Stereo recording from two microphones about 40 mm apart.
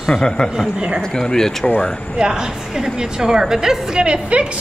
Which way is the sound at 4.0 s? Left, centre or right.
Right.